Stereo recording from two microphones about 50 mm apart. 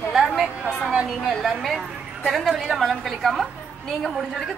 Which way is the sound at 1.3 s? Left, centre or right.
Centre.